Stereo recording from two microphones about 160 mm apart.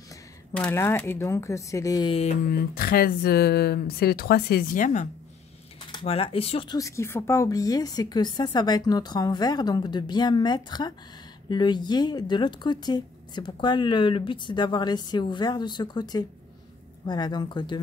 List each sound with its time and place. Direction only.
0.6 s speech: 15° left (ahead or behind)
2.5 s speech: 70° left (ahead or behind); by 5.0 s 55° left (ahead or behind)
5.9 s speech: 30° left (ahead or behind)
6.8 s speech: 15° left (ahead or behind)